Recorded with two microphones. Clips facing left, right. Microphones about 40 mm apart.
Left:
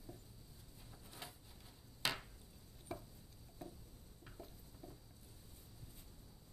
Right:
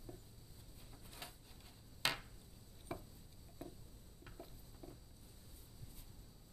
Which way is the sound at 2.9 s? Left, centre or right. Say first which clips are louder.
Right 1 dB; centre.